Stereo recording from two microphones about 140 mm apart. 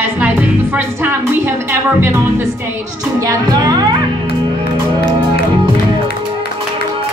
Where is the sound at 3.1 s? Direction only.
25° right (ahead or behind).